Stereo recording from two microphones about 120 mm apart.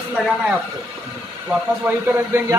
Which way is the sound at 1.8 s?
15° right (ahead or behind).